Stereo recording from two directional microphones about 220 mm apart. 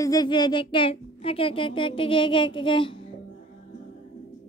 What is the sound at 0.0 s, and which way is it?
A woman's voice, 15° left (ahead or behind).